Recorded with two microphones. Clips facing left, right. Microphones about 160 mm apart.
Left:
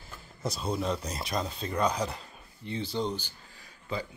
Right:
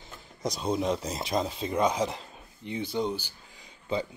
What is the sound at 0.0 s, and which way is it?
Speech, 20° right (ahead or behind).